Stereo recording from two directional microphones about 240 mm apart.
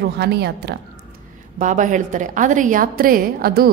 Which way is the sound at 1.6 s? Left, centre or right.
Right.